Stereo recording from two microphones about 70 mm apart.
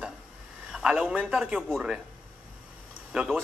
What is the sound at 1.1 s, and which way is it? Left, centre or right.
Speech, centre.